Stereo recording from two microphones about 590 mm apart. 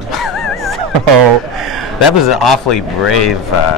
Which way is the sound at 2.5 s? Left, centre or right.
Left.